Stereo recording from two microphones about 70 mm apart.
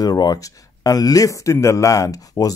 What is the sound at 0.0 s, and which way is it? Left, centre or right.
Speech, left.